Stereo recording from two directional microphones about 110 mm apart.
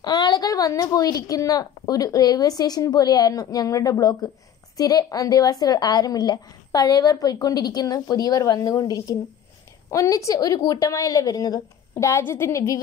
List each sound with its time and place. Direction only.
0.0 s a woman's voice: 40° left (ahead or behind)